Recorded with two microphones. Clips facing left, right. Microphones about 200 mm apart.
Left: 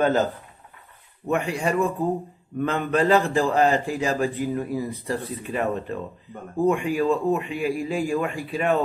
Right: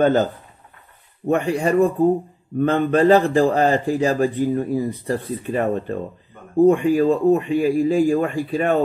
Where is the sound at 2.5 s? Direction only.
35° right (ahead or behind).